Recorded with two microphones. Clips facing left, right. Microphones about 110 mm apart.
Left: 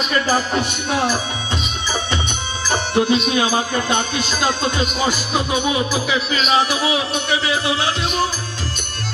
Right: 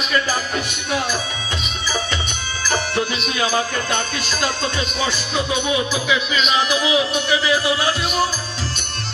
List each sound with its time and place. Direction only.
0.1 s music: 30° left (ahead or behind)
2.6 s music: 20° left (ahead or behind)
6.3 s music: 35° left (ahead or behind)